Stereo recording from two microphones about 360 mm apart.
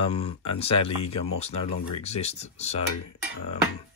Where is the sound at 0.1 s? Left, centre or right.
Centre.